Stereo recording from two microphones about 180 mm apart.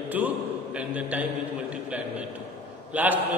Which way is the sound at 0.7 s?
5° right (ahead or behind).